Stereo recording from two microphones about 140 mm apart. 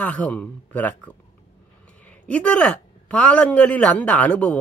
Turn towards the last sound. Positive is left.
turn(degrees=10)  # may be behind; listen again after turning